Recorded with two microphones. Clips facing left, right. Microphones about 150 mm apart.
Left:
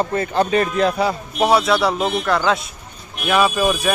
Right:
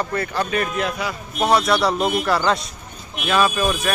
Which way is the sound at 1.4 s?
Centre (ahead or behind).